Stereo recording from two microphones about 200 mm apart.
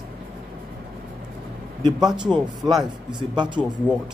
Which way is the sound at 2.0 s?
20° right (ahead or behind).